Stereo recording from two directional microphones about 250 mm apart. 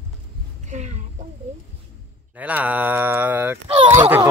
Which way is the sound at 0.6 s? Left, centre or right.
Right.